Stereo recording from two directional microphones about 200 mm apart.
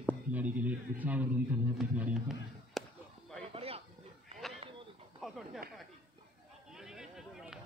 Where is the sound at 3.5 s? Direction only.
30° right (ahead or behind).